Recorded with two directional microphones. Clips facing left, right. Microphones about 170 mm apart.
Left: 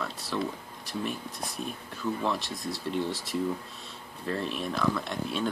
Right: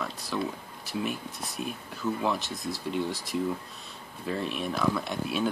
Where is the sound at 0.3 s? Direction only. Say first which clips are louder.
Even; 5° right (ahead or behind).